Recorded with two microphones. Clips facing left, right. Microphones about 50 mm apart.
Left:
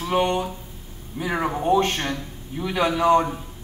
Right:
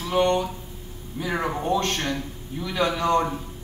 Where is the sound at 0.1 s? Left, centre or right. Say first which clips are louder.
Right 1 dB; centre.